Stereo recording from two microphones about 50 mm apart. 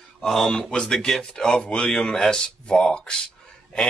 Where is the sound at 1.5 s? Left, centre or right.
Centre.